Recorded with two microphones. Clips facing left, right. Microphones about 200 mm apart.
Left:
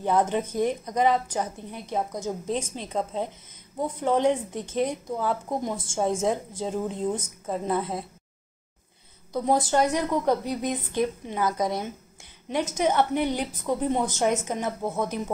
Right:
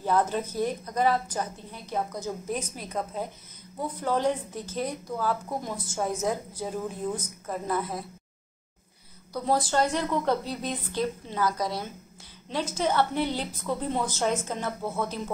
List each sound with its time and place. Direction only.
0.0 s a woman's voice: 20° left (ahead or behind)
9.3 s a woman's voice: 20° left (ahead or behind)